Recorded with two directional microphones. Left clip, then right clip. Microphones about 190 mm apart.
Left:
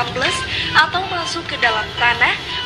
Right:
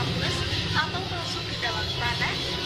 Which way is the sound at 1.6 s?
45° left (ahead or behind).